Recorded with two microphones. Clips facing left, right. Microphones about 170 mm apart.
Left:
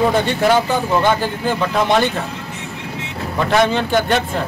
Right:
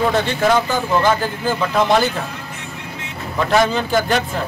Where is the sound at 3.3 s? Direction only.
Centre (ahead or behind).